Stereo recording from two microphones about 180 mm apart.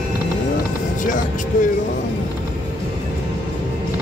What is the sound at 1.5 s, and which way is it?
Speech, 50° left (ahead or behind).